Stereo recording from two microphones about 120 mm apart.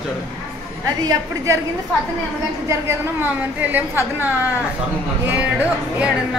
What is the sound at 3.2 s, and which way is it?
Speech, 15° right (ahead or behind).